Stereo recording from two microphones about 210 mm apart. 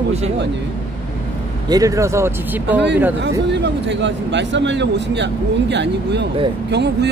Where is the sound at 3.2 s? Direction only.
55° right (ahead or behind).